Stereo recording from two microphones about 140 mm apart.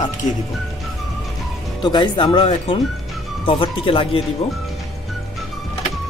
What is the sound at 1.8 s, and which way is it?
Speech, 30° left (ahead or behind).